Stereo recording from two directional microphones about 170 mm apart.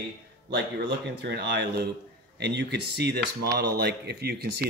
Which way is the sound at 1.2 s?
85° right.